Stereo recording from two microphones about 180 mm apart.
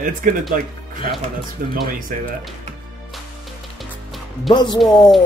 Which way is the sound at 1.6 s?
55° right (ahead or behind).